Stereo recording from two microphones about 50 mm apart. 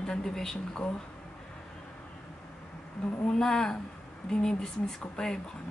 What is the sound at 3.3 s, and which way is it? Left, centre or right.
Speech, centre.